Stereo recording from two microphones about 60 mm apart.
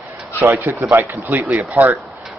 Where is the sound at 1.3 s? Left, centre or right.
Right.